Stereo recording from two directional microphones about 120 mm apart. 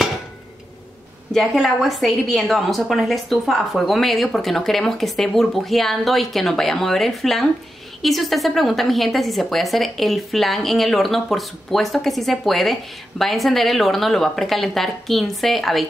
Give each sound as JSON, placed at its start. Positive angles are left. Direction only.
{"t": 1.3, "sound": "a woman's voice", "side_deg": 5}